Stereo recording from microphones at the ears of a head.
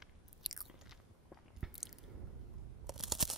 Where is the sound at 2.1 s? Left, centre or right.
Right.